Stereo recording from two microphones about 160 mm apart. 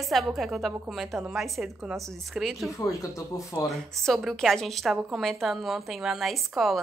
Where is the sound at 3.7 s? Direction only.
Centre (ahead or behind).